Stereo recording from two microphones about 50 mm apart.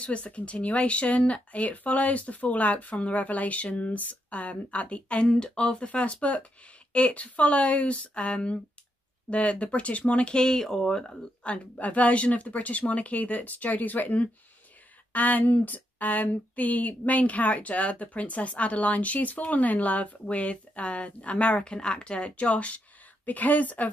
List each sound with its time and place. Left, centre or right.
0.0 s speech: left
11.4 s speech: left